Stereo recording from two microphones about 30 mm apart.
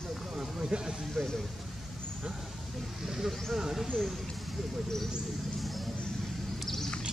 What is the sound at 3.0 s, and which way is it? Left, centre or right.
Speech, centre.